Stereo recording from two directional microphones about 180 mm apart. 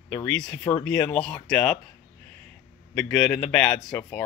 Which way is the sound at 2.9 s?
10° left (ahead or behind).